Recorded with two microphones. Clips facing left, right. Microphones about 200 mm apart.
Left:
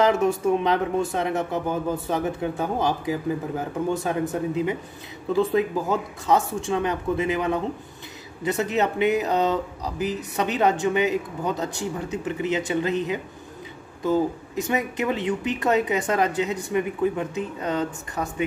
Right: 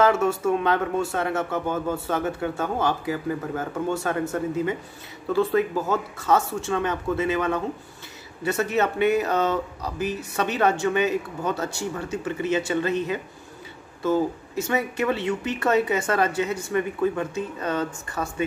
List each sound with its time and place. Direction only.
0.0 s speech: 15° left (ahead or behind)